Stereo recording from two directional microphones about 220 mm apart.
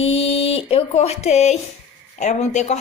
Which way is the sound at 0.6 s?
25° left (ahead or behind).